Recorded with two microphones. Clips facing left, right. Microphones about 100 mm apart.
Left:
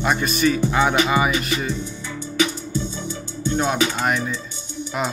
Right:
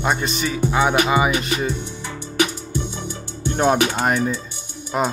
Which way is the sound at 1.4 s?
30° right (ahead or behind).